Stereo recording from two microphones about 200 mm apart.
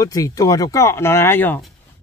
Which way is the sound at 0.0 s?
15° left (ahead or behind).